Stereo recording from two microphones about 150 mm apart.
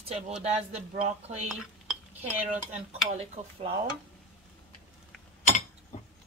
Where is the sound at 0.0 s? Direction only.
45° right (ahead or behind).